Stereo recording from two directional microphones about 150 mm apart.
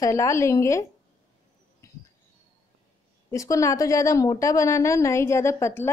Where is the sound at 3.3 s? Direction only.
20° left (ahead or behind).